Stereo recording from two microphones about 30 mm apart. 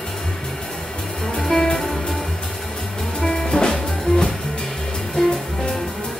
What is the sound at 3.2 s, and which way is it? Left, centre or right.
Music, centre.